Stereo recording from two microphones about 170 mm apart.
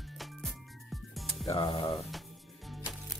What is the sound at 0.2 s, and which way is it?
Music, centre (ahead or behind).